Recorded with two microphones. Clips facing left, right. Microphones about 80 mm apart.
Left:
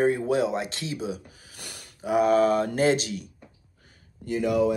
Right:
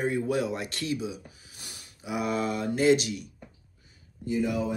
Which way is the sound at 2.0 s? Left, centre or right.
Left.